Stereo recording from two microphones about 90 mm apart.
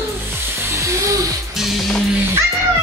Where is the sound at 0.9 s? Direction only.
35° right (ahead or behind).